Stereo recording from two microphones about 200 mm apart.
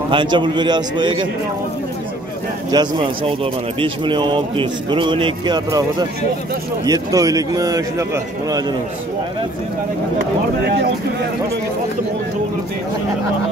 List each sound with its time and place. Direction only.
0.1 s speech: 25° right (ahead or behind)
2.7 s a man's voice: 20° right (ahead or behind)